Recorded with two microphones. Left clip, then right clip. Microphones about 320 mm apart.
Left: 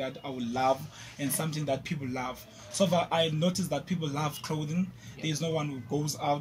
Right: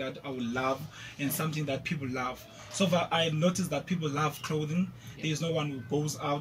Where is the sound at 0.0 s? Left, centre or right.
Centre.